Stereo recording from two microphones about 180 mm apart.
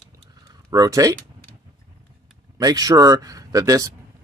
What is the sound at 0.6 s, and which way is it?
Speech, 20° right (ahead or behind).